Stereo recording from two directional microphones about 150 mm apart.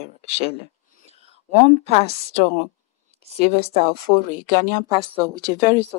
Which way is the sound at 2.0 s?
45° right (ahead or behind).